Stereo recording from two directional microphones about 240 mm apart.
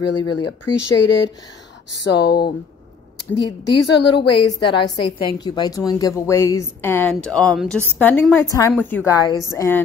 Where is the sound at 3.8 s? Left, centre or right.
Left.